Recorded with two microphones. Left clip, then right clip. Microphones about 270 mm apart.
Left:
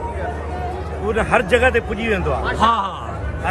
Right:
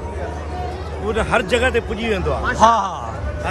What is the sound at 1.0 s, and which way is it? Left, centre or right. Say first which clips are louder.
A man's voice: left 1 dB; centre.